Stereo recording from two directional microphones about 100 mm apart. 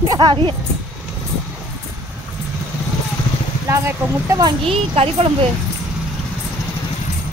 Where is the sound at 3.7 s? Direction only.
30° right (ahead or behind).